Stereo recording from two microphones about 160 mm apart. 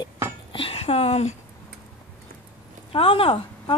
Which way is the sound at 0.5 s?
35° left (ahead or behind).